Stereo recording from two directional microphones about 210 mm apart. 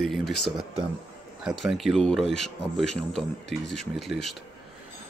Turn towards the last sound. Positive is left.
turn(degrees=0)  # may be behind; listen again after turning